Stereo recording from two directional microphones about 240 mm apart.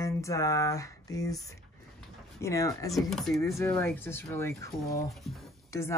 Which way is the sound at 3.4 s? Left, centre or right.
Centre.